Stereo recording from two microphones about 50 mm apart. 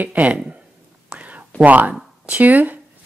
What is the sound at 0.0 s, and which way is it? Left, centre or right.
Speech, right.